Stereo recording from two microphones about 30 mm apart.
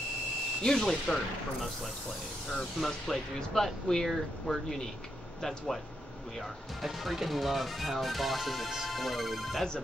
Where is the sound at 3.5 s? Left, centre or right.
Centre.